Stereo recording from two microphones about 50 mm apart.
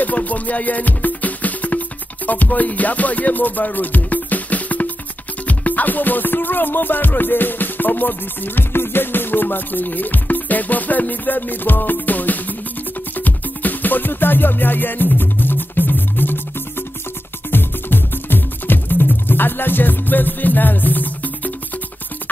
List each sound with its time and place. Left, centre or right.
0.0 s music: left
17.5 s music: left